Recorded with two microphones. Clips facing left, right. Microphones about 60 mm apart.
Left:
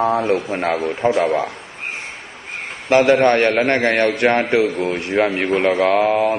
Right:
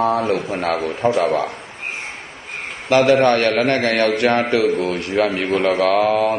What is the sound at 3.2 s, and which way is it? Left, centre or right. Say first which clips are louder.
Speech: left 1 dB; left.